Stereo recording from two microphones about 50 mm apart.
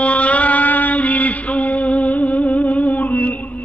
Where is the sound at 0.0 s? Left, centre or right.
Left.